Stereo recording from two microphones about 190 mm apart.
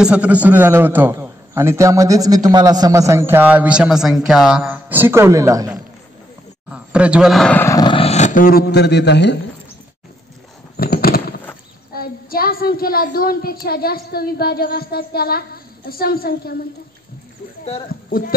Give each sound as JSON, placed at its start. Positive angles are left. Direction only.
{"t": 0.0, "sound": "a man's voice", "side_deg": -5}
{"t": 6.7, "sound": "speech", "side_deg": -5}
{"t": 10.8, "sound": "a sound", "side_deg": 50}
{"t": 11.9, "sound": "a woman's voice", "side_deg": 50}
{"t": 17.8, "sound": "speech", "side_deg": 50}